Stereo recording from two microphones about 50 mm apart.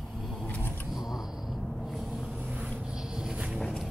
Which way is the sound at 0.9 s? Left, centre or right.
Centre.